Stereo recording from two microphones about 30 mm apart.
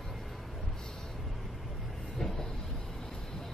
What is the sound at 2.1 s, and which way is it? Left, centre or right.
Train, centre.